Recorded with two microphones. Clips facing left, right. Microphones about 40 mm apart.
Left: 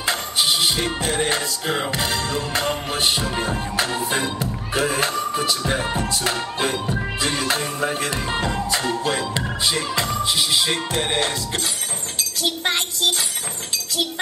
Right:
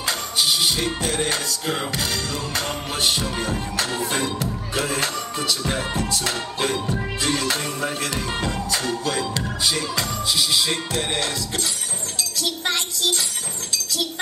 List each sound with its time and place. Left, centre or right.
0.0 s music: left
3.0 s speech: left